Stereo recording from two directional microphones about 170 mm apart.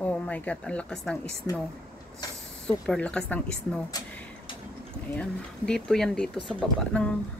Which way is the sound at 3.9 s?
25° left (ahead or behind).